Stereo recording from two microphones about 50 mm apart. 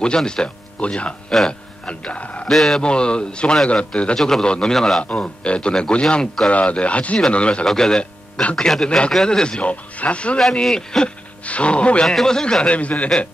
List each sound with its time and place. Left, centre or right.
0.0 s speech: centre
2.4 s speech: centre
2.8 s speech: centre
4.2 s a man's voice: centre
5.2 s speech: left
7.6 s a man's voice: centre
8.0 s speech: left
10.6 s a man's voice: centre
11.4 s speech: left
12.1 s a man's voice: centre
12.6 s speech: left